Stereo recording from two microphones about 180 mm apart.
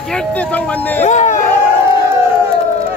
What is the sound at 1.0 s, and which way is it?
Speech, 40° left (ahead or behind).